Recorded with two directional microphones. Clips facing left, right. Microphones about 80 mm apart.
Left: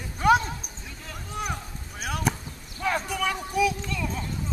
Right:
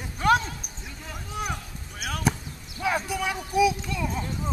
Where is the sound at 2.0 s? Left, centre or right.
Centre.